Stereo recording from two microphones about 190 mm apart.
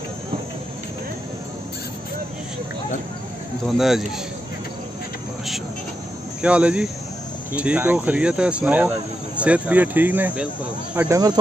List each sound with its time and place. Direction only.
3.7 s speech: centre (ahead or behind)
6.4 s speech: 5° right (ahead or behind)